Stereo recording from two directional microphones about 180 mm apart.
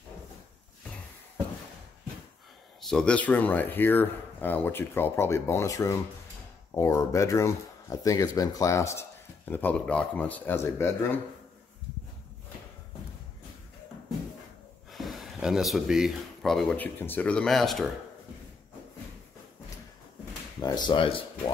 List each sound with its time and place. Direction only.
2.9 s speech: 5° left (ahead or behind)
14.9 s speech: centre (ahead or behind)
20.6 s speech: 25° left (ahead or behind)